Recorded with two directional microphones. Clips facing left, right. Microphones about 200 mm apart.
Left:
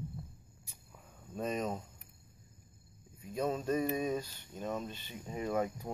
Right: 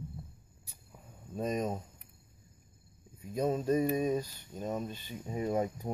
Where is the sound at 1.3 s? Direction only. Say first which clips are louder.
Right 2 dB; 10° right (ahead or behind).